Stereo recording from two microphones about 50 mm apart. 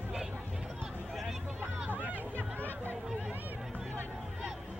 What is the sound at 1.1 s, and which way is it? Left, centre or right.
Vehicle, centre.